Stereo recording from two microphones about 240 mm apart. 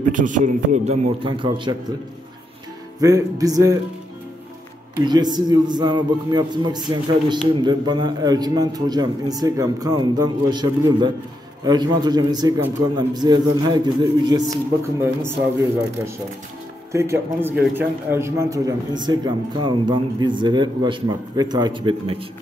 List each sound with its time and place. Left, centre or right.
0.1 s a man's voice: right
3.0 s a man's voice: centre
4.9 s a man's voice: centre
16.9 s a man's voice: centre